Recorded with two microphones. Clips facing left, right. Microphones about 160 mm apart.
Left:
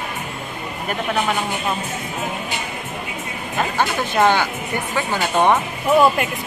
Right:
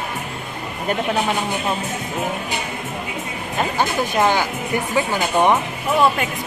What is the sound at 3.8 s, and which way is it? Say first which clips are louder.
Speech: left 1 dB; 10° right (ahead or behind).